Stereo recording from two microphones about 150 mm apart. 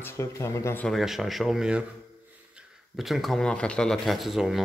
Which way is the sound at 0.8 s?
Centre (ahead or behind).